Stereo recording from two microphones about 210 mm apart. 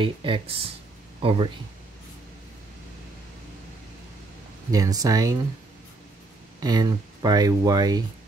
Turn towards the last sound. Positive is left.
turn(degrees=-20)  # may be behind; listen again after turning